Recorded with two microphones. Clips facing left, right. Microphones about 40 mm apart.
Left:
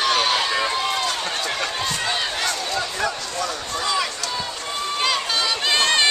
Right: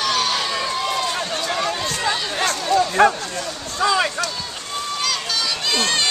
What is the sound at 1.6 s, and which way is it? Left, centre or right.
Run, centre.